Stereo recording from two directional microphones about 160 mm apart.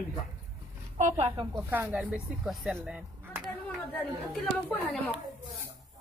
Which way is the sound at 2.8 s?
10° right (ahead or behind).